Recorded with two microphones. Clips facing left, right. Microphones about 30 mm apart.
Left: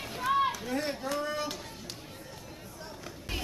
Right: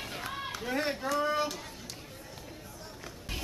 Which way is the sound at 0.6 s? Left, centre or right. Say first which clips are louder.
Right 1 dB; centre.